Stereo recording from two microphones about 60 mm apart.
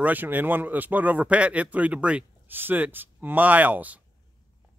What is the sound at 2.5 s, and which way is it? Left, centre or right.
Speech, right.